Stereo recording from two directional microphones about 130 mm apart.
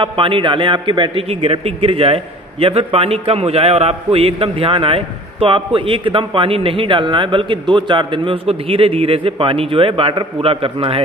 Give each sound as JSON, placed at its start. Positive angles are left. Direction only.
{"t": 0.0, "sound": "a man's voice", "side_deg": -40}